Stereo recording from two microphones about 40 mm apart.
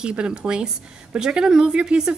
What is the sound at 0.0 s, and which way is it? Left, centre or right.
Speech, right.